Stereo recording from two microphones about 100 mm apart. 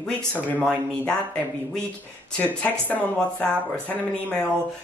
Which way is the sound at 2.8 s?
15° left (ahead or behind).